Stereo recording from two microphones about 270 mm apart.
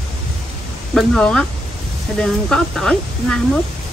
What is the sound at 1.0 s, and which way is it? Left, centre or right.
Speech, centre.